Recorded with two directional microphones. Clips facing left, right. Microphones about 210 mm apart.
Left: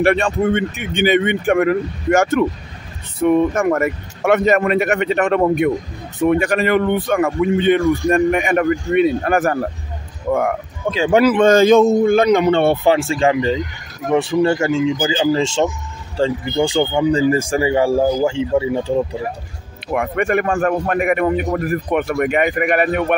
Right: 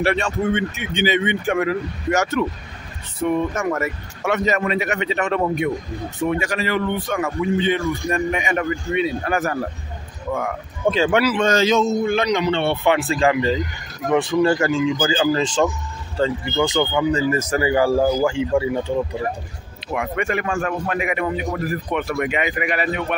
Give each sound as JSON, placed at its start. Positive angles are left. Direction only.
{"t": 0.0, "sound": "a man's voice", "side_deg": 55}
{"t": 3.5, "sound": "speech", "side_deg": 55}
{"t": 10.8, "sound": "speech", "side_deg": -15}
{"t": 11.2, "sound": "a man's voice", "side_deg": 55}
{"t": 12.8, "sound": "speech", "side_deg": 30}
{"t": 19.9, "sound": "a man's voice", "side_deg": 55}